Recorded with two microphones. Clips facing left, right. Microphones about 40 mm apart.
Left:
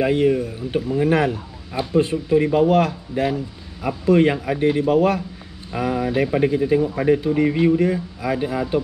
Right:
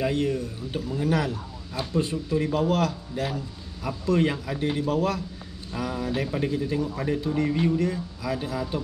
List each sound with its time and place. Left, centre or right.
0.0 s speech: left